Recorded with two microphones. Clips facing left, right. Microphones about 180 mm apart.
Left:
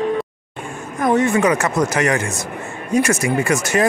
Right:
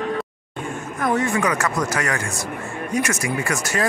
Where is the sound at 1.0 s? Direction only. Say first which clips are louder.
Left 5 dB; 20° left (ahead or behind).